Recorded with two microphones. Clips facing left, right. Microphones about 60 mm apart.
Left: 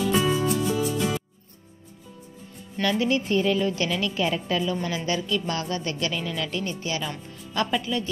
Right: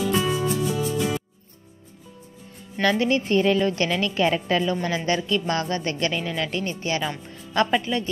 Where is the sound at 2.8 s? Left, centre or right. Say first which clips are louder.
Right 3 dB; right.